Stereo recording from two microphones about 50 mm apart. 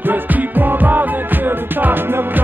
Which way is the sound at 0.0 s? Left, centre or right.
Right.